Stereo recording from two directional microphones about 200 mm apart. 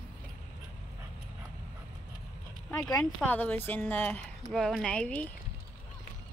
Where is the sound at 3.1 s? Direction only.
10° left (ahead or behind).